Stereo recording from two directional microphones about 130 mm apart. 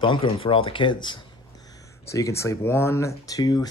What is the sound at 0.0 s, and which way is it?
Speech, 40° left (ahead or behind).